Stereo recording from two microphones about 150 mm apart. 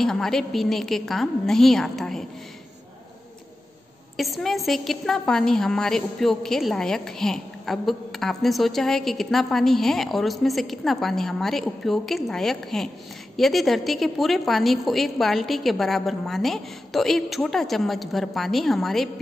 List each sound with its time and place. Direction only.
0.0 s a woman's voice: 5° left (ahead or behind)
4.2 s a woman's voice: centre (ahead or behind)